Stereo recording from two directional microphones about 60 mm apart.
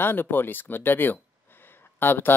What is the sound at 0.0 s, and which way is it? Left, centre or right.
Speech, left.